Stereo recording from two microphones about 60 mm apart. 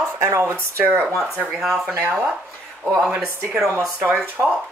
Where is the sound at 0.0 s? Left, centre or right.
Right.